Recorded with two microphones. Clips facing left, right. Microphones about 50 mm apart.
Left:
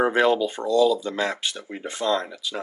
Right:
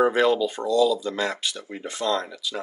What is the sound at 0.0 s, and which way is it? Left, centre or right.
Speech, left.